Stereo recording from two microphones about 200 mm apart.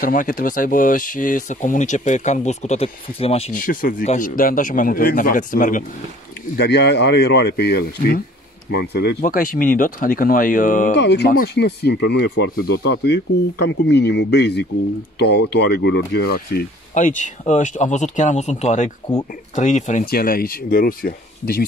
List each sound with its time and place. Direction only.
0.0 s speech: 45° left (ahead or behind)
3.5 s a man's voice: 45° left (ahead or behind)
6.5 s a man's voice: 55° left (ahead or behind)
11.0 s a man's voice: 55° left (ahead or behind)